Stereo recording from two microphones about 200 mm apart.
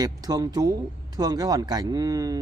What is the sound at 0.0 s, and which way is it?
Speech, 20° right (ahead or behind).